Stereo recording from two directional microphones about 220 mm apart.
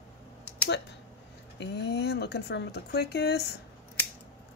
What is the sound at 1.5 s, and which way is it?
Speech, 50° left (ahead or behind).